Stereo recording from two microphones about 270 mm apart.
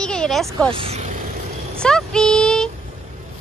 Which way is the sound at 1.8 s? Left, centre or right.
Centre.